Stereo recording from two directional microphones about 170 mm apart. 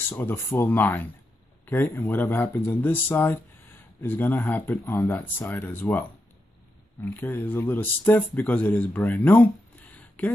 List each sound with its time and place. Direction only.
0.1 s speech: 10° left (ahead or behind)